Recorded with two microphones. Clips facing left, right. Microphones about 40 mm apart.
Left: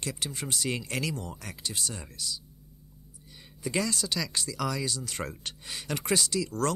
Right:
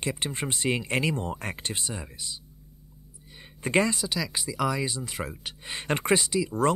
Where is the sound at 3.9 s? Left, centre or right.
Centre.